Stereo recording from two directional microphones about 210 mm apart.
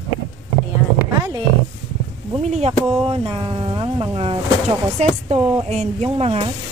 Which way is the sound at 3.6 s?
25° right (ahead or behind).